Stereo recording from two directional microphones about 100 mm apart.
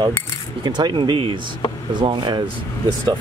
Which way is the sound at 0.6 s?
50° right (ahead or behind).